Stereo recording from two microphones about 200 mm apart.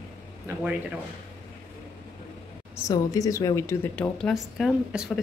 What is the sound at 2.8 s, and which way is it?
A woman's voice, 20° left (ahead or behind).